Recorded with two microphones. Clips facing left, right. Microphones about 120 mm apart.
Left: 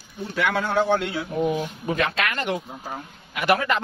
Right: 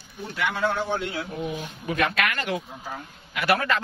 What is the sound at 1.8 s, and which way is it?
A man's voice, 30° left (ahead or behind).